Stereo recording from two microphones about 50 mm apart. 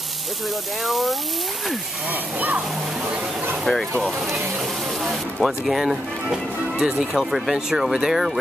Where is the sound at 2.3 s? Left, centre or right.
Right.